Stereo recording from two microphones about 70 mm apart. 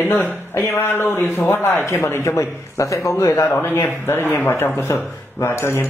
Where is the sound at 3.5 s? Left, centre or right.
Left.